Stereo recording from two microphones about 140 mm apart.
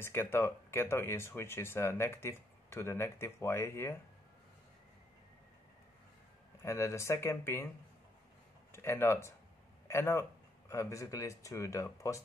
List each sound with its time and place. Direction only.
0.0 s speech: 15° left (ahead or behind)
6.6 s speech: 20° left (ahead or behind)
8.7 s speech: 15° left (ahead or behind)